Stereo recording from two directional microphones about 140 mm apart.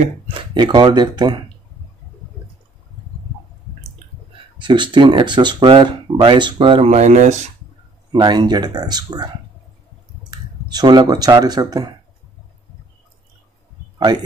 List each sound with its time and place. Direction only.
0.3 s speech: 35° right (ahead or behind)
4.6 s speech: 35° right (ahead or behind)
6.9 s speech: 55° right (ahead or behind)
8.1 s speech: 30° right (ahead or behind)
10.3 s speech: 30° right (ahead or behind)